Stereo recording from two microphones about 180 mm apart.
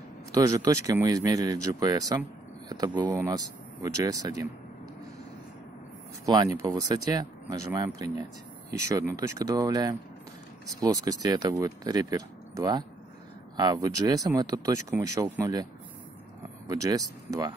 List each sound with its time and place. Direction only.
0.3 s speech: 20° right (ahead or behind)
6.2 s speech: 20° right (ahead or behind)
16.6 s speech: 20° right (ahead or behind)